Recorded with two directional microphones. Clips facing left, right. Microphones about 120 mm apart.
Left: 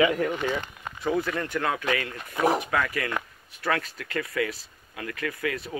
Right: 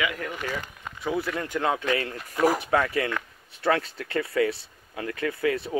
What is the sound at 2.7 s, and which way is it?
Speech, 30° right (ahead or behind).